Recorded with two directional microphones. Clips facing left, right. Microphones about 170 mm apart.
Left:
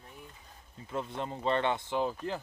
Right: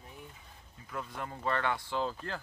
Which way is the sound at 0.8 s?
25° left (ahead or behind).